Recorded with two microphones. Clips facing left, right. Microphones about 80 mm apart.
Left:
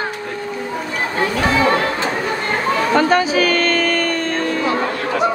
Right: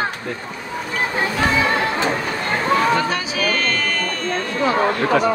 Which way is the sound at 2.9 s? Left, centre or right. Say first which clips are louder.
Left 7 dB; left.